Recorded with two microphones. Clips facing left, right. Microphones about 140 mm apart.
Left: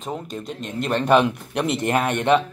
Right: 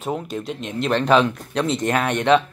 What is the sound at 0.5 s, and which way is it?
Speech, 45° left (ahead or behind).